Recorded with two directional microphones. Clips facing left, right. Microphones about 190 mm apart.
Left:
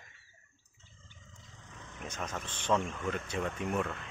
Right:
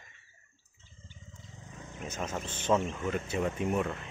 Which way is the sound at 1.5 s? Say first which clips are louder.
Right 4 dB; 25° right (ahead or behind).